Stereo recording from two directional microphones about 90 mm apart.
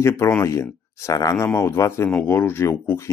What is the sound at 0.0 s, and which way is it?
Speech, 30° left (ahead or behind).